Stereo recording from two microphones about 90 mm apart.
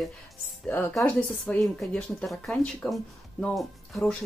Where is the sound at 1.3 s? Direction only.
5° left (ahead or behind).